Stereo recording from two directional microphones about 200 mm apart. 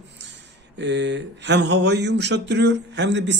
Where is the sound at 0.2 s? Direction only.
60° right (ahead or behind).